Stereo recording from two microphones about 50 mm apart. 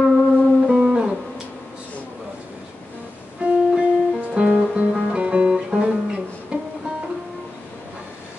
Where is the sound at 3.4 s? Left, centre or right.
Right.